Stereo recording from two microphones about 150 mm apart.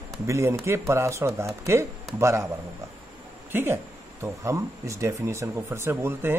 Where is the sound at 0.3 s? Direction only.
20° right (ahead or behind).